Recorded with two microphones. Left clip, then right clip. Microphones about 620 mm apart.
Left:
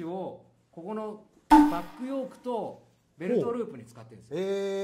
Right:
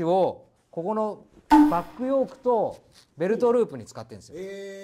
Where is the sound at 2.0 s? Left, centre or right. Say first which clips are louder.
Right 10 dB; right.